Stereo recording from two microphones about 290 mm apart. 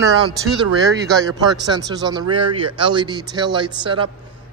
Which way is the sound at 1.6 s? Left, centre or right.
Centre.